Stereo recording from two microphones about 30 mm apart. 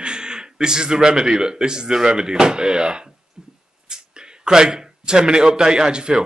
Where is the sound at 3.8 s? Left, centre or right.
Right.